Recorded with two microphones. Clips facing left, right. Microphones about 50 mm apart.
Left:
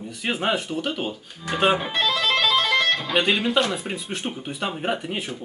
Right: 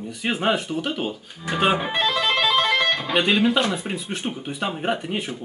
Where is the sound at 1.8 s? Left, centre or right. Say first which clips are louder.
Right 1 dB; centre.